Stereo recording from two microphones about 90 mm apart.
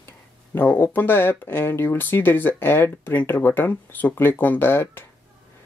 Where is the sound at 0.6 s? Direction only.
25° left (ahead or behind).